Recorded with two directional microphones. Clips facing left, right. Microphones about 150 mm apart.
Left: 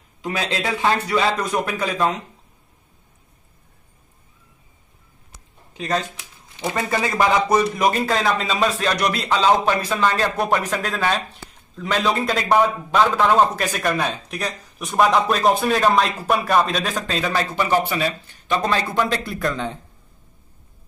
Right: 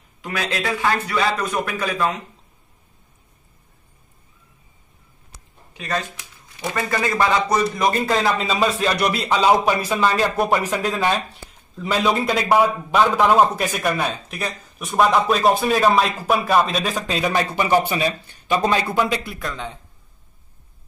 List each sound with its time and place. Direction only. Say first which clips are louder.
0.2 s a man's voice: left 1 dB; 25° left (ahead or behind)
6.6 s a man's voice: even; 20° left (ahead or behind)
8.0 s a man's voice: right 1 dB; 5° right (ahead or behind)
17.2 s speech: right 2 dB; 15° right (ahead or behind)